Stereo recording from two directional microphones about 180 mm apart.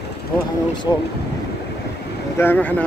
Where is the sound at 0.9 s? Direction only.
25° left (ahead or behind).